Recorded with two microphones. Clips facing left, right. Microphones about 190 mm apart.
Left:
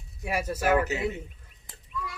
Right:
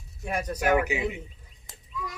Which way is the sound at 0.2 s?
5° left (ahead or behind).